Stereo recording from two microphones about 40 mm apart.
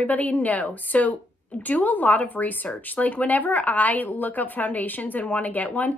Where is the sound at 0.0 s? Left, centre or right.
Left.